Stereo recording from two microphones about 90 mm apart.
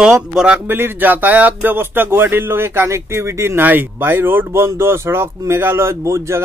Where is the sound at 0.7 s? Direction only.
25° right (ahead or behind).